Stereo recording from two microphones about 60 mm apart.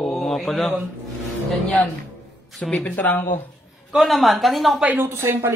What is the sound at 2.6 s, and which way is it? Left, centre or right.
Speech, left.